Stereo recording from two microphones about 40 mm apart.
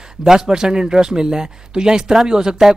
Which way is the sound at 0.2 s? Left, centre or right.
Centre.